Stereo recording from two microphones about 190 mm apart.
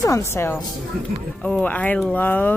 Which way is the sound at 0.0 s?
15° left (ahead or behind).